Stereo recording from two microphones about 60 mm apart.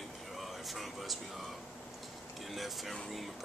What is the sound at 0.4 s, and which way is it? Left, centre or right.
Speech, centre.